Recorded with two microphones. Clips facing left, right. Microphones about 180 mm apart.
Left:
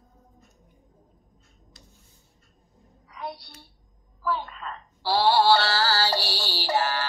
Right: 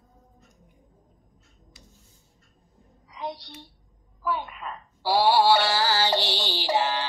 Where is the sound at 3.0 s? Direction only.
20° right (ahead or behind).